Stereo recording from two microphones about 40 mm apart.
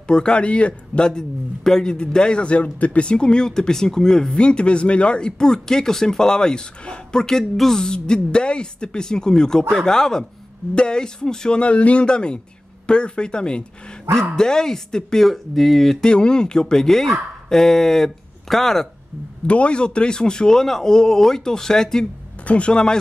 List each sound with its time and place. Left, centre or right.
0.0 s a man's voice: left
1.0 s a man's voice: centre
7.8 s a man's voice: left
11.6 s a man's voice: left
15.2 s speech: centre
16.0 s speech: left
19.4 s speech: left; by 22.0 s centre
22.5 s a man's voice: left